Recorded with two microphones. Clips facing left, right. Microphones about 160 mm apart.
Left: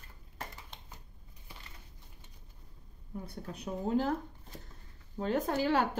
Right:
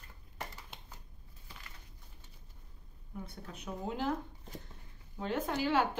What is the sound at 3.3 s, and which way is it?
Speech, 35° left (ahead or behind).